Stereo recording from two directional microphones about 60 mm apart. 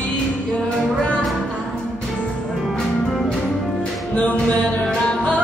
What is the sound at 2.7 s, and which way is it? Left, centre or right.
Music, centre.